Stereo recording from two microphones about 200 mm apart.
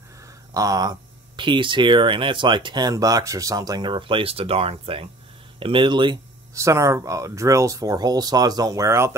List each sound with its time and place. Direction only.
0.6 s speech: 20° right (ahead or behind)